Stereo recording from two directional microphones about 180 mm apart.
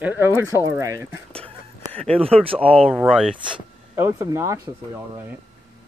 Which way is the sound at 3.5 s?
15° right (ahead or behind).